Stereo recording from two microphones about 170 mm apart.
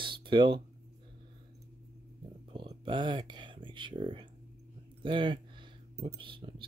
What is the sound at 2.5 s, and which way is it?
Speech, 30° right (ahead or behind).